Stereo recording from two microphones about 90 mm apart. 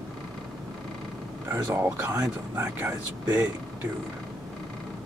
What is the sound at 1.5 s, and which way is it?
Speech, 25° right (ahead or behind).